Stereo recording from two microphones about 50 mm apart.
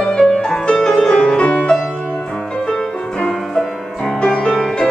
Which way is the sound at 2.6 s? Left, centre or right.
Centre.